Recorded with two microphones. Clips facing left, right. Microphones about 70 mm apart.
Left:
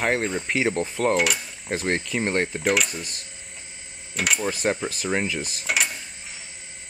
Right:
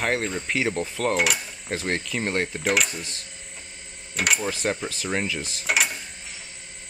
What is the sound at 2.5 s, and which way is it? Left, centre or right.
Speech, centre.